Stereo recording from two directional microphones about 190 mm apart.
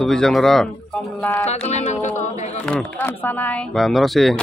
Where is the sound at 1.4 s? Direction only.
35° left (ahead or behind).